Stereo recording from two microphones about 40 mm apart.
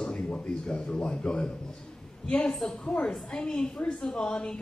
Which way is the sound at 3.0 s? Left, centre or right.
Left.